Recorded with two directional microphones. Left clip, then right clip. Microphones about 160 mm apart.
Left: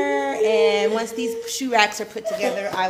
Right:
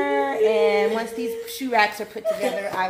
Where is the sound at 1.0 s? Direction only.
5° left (ahead or behind).